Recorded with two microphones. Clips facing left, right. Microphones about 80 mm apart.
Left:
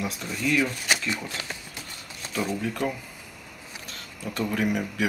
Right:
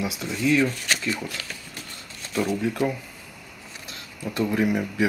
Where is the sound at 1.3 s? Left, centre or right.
Left.